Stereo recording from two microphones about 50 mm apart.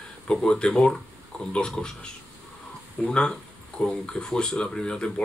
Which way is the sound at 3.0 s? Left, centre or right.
Centre.